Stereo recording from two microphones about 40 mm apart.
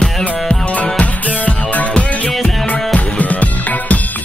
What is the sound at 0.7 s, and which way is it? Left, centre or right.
Music, left.